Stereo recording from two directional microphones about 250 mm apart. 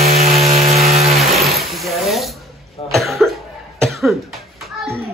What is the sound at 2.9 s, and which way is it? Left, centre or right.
Cough, centre.